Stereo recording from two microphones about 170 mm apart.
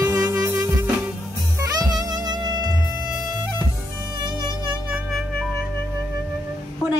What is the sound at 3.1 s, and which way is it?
Music, 5° right (ahead or behind).